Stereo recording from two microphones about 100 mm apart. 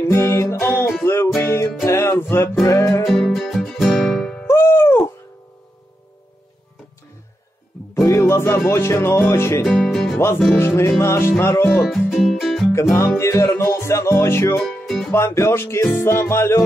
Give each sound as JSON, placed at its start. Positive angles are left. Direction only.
{"t": 0.0, "sound": "music", "side_deg": 30}
{"t": 3.1, "sound": "music", "side_deg": 5}
{"t": 4.5, "sound": "music", "side_deg": 25}
{"t": 7.9, "sound": "music", "side_deg": 30}
{"t": 9.7, "sound": "music", "side_deg": 0}
{"t": 10.1, "sound": "music", "side_deg": 25}
{"t": 11.7, "sound": "music", "side_deg": 0}
{"t": 13.2, "sound": "music", "side_deg": 30}
{"t": 14.6, "sound": "music", "side_deg": 0}
{"t": 15.1, "sound": "music", "side_deg": 30}